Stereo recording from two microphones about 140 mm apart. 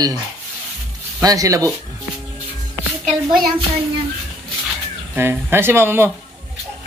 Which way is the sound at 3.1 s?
Centre (ahead or behind).